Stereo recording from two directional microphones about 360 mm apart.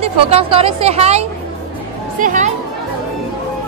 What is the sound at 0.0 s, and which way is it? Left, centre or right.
Speech, centre.